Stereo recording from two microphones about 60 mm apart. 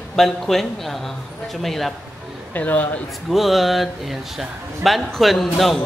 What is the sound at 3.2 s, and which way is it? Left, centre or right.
Speech, centre.